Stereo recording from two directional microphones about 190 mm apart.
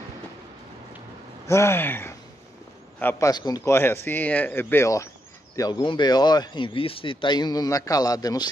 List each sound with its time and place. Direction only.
1.5 s speech: 15° left (ahead or behind)